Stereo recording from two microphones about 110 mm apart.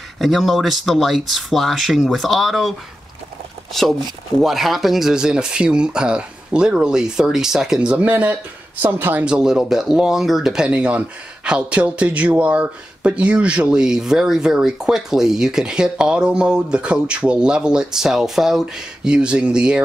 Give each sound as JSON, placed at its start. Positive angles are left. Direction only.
{"t": 0.2, "sound": "speech", "side_deg": 0}
{"t": 4.4, "sound": "speech", "side_deg": 0}
{"t": 9.2, "sound": "speech", "side_deg": -5}